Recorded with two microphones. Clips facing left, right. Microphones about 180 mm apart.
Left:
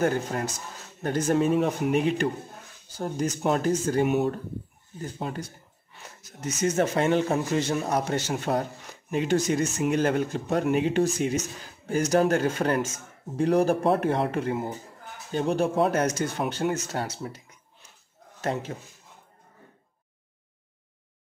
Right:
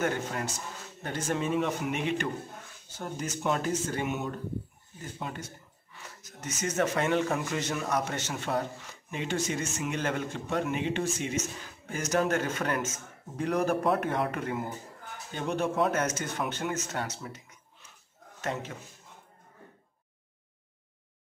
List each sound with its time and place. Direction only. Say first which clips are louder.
0.0 s a man's voice: left 5 dB; 35° left (ahead or behind)
6.6 s a man's voice: left 5 dB; 30° left (ahead or behind)
18.4 s a man's voice: left 5 dB; 35° left (ahead or behind)